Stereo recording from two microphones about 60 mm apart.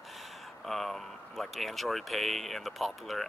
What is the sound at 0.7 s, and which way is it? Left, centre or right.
Speech, centre.